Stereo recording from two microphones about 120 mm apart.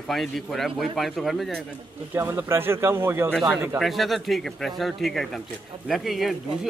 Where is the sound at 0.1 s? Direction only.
Centre (ahead or behind).